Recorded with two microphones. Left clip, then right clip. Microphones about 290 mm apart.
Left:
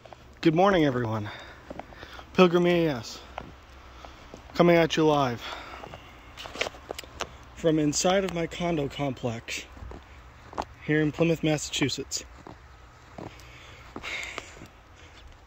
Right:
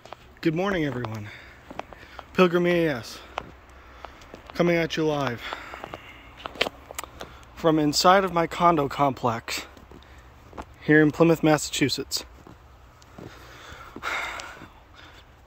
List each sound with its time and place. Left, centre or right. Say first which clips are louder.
0.4 s speech: left 4 dB; centre
4.6 s speech: left 3 dB; centre
7.5 s speech: right 3 dB; centre
10.9 s speech: right 7 dB; centre
13.6 s a sound: right 5 dB; centre